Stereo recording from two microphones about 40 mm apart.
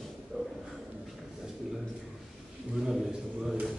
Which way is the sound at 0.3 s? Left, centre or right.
Right.